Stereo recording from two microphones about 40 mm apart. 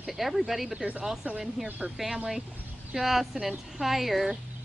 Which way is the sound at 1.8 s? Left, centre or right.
Right.